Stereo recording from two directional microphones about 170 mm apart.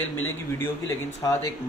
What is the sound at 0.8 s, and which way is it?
Speech, 20° left (ahead or behind).